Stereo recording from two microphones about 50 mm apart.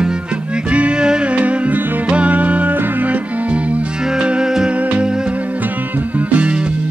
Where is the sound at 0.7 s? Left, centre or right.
Right.